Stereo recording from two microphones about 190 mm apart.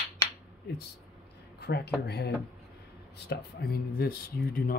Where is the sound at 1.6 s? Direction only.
60° left (ahead or behind).